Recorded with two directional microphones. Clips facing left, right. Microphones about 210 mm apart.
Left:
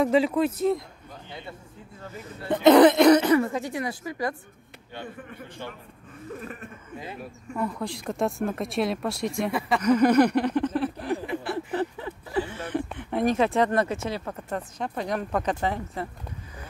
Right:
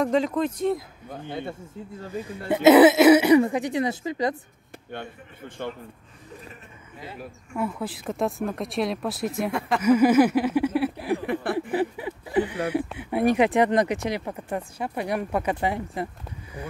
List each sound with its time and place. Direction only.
0.0 s speech: 5° left (ahead or behind)
1.2 s speech: 55° right (ahead or behind)
2.2 s speech: 10° right (ahead or behind)
5.6 s speech: 55° right (ahead or behind)
7.2 s speech: 5° right (ahead or behind)